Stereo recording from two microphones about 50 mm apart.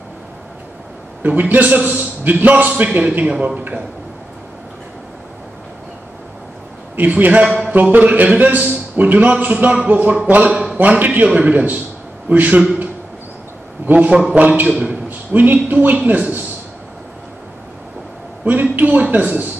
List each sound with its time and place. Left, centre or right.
1.2 s a man's voice: right
7.0 s a man's voice: right
7.4 s a man's voice: centre
7.9 s a man's voice: right
12.4 s a man's voice: right
13.8 s a man's voice: right
15.0 s a man's voice: right
18.4 s a man's voice: right